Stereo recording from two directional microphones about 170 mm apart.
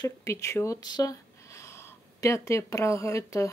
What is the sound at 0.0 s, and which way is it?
Speech, 15° left (ahead or behind).